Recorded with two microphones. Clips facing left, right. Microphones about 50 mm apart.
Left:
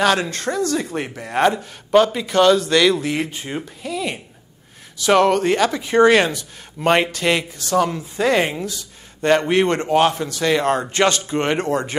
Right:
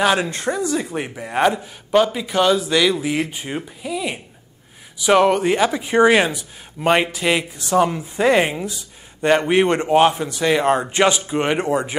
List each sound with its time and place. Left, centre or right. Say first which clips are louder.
0.0 s speech: even; centre
7.5 s speech: right 1 dB; centre